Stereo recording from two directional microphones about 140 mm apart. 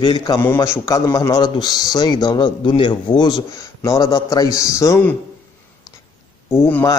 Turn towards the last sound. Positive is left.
turn(degrees=15)  # may be behind; listen again after turning